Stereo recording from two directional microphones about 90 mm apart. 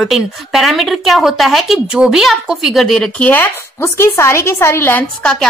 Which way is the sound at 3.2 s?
20° left (ahead or behind).